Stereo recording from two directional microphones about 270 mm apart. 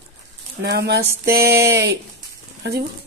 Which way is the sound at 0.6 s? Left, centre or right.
Right.